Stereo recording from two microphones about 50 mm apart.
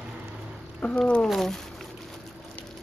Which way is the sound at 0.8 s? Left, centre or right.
Left.